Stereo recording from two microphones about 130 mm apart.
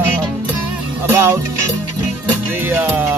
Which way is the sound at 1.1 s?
20° right (ahead or behind).